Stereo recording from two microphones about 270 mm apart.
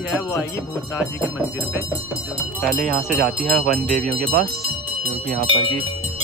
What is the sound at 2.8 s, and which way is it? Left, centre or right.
Jingle bell, right.